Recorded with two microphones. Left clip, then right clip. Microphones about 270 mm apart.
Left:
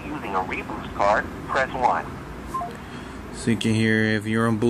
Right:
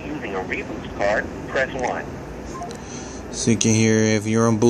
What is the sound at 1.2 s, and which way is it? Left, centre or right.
Speech, left.